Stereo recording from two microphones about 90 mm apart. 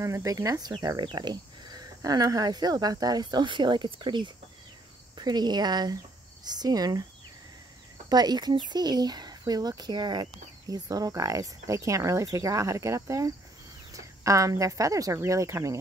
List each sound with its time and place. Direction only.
0.0 s speech: 35° right (ahead or behind)
8.1 s speech: 50° right (ahead or behind)
10.7 s speech: 40° right (ahead or behind)